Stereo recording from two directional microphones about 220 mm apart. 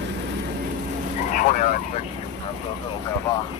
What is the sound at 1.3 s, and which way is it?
Vehicle, 35° left (ahead or behind).